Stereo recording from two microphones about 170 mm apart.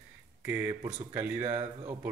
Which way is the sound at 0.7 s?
30° right (ahead or behind).